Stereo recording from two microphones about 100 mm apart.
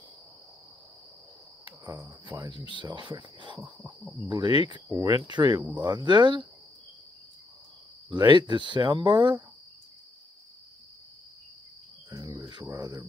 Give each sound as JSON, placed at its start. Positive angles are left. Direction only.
{"t": 1.9, "sound": "cricket", "side_deg": -35}
{"t": 2.4, "sound": "speech", "side_deg": -50}
{"t": 8.1, "sound": "speech", "side_deg": -50}
{"t": 12.2, "sound": "cricket", "side_deg": -40}